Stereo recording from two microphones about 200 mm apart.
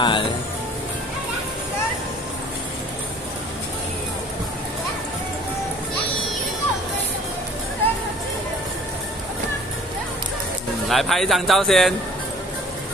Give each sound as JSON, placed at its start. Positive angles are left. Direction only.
{"t": 0.0, "sound": "speech", "side_deg": 25}
{"t": 10.9, "sound": "a man's voice", "side_deg": 0}